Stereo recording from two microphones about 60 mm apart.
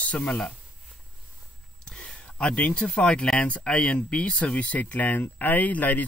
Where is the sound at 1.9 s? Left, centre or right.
Centre.